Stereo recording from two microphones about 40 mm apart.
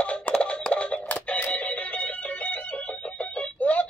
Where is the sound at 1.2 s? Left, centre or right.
Left.